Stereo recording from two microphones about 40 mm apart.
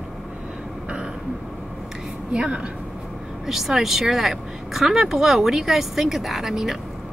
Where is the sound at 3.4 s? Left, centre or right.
Centre.